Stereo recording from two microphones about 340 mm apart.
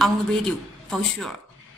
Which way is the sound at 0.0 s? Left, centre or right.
Centre.